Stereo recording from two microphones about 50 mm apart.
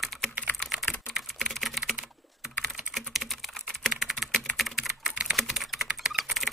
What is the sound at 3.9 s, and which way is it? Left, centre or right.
Typing, centre.